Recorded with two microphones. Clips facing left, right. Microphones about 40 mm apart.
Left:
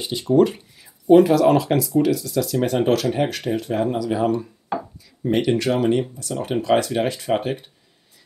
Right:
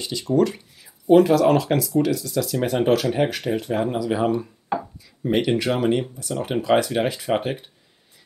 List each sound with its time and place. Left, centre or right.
0.3 s speech: left
1.0 s speech: centre
4.3 s speech: centre